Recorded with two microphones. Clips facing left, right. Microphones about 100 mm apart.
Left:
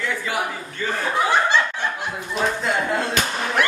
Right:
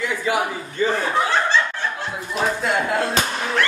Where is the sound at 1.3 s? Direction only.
15° left (ahead or behind).